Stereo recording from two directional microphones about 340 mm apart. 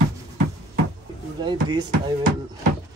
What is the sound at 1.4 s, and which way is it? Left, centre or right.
Speech, centre.